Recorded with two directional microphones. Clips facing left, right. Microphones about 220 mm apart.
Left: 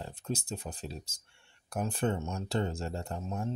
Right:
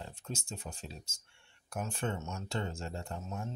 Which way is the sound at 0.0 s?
35° left (ahead or behind).